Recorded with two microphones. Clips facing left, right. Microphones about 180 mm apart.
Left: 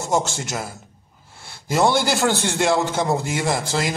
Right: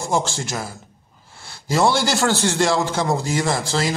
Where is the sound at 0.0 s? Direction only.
20° left (ahead or behind).